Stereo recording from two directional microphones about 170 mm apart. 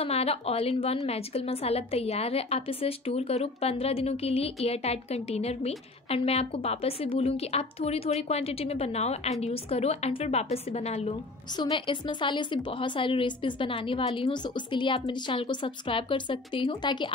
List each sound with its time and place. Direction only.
0.0 s a woman's voice: 35° left (ahead or behind)
11.5 s a woman's voice: 25° left (ahead or behind)